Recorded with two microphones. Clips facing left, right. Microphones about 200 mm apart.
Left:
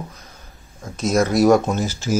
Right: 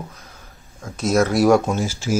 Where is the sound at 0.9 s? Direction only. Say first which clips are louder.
Even; 5° right (ahead or behind).